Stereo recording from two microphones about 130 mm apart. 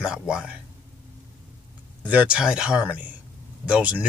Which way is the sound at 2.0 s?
10° right (ahead or behind).